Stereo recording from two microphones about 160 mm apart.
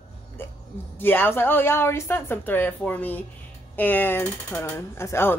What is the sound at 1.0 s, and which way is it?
A woman's voice, 15° left (ahead or behind).